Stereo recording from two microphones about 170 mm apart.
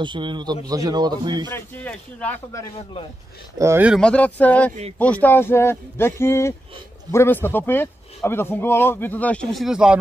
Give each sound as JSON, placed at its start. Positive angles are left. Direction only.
{"t": 0.0, "sound": "a man's voice", "side_deg": -30}
{"t": 1.5, "sound": "a man's voice", "side_deg": 10}
{"t": 3.5, "sound": "speech", "side_deg": -15}
{"t": 3.9, "sound": "a man's voice", "side_deg": 5}